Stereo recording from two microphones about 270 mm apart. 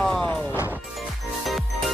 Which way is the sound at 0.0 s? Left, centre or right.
Centre.